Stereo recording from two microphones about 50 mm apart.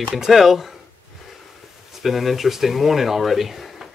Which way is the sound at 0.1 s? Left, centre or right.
Centre.